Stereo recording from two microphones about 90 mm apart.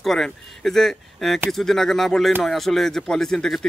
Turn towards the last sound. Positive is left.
turn(degrees=5)  # may be behind; listen again after turning